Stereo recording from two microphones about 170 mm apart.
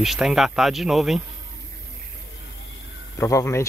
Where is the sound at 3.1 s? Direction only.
20° left (ahead or behind).